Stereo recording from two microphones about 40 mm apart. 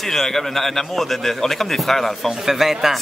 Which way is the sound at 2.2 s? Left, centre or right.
Centre.